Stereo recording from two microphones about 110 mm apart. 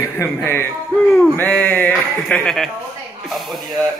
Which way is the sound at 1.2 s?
15° left (ahead or behind).